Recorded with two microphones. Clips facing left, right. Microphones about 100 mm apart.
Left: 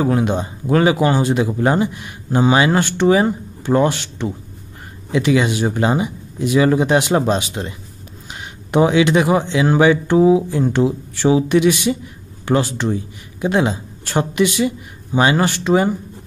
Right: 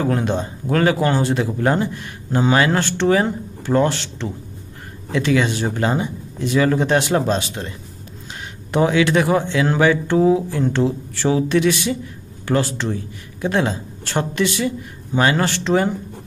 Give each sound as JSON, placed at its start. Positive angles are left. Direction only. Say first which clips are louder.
{"t": 0.0, "sound": "speech", "louder": "left 3 dB", "side_deg": 10}
{"t": 8.7, "sound": "speech", "louder": "left 3 dB", "side_deg": 20}